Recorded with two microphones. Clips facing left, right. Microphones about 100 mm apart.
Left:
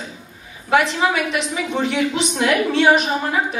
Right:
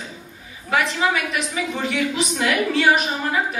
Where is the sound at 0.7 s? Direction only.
30° left (ahead or behind).